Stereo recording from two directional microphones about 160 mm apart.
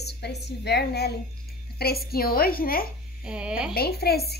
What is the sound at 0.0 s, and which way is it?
A woman's voice, 90° left.